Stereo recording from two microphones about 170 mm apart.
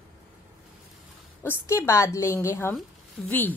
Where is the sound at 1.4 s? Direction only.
15° left (ahead or behind).